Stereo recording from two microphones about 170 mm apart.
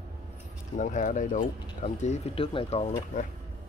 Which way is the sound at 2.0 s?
35° left (ahead or behind).